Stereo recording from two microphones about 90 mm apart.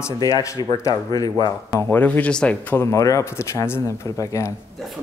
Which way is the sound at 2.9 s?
40° left (ahead or behind).